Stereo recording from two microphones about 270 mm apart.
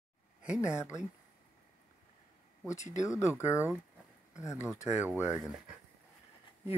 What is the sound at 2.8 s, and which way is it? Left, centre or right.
Speech, left.